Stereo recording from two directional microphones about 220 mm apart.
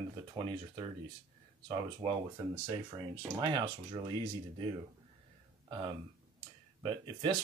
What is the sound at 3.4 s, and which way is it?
Speech, 20° right (ahead or behind).